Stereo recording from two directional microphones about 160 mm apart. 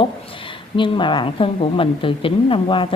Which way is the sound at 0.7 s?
30° left (ahead or behind).